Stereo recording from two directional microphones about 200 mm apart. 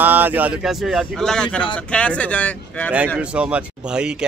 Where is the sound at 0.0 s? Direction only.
10° right (ahead or behind); by 2.9 s 5° left (ahead or behind).